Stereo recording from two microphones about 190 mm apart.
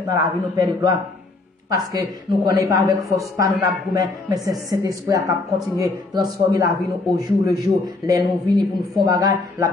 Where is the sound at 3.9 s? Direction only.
20° right (ahead or behind).